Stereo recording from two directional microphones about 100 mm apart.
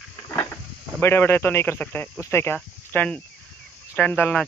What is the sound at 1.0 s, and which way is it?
Speech, 25° left (ahead or behind).